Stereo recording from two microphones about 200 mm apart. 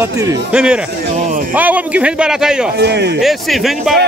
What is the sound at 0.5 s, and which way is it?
A man's voice, 5° right (ahead or behind).